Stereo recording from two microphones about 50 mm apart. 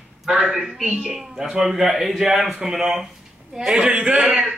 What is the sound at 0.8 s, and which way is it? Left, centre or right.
Speech, right.